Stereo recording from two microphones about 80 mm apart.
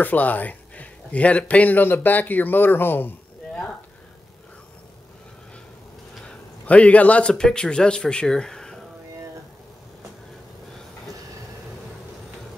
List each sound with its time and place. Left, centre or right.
0.0 s speech: left
6.2 s a man's voice: centre